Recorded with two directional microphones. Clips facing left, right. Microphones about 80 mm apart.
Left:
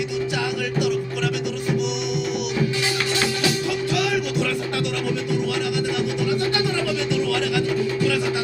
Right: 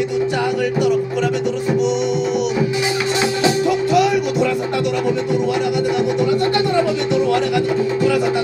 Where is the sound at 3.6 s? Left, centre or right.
Right.